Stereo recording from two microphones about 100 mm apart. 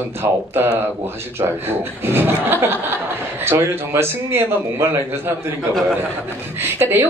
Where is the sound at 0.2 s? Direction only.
30° right (ahead or behind).